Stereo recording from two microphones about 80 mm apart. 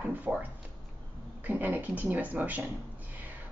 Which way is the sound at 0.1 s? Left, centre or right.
Right.